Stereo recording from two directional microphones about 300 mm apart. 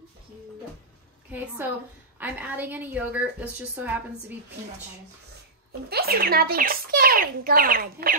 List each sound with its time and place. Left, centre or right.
2.1 s a woman's voice: centre
5.9 s speech: right